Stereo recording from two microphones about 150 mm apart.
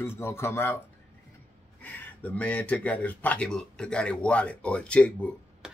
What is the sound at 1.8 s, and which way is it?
Speech, 10° left (ahead or behind).